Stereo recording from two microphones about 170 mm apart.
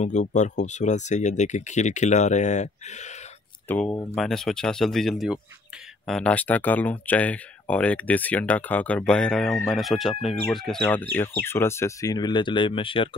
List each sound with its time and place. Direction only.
0.0 s speech: 45° left (ahead or behind)
3.6 s speech: 10° left (ahead or behind); by 13.1 s 30° left (ahead or behind)